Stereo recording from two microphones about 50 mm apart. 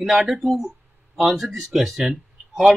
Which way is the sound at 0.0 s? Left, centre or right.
Centre.